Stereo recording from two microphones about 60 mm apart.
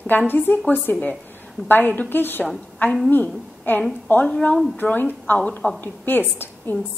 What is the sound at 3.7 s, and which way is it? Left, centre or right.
A woman's voice, left.